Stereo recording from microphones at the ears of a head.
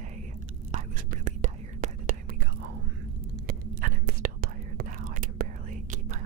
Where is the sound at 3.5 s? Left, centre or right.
Right.